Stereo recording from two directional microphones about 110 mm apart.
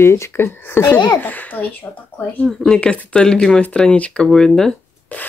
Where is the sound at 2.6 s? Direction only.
10° left (ahead or behind).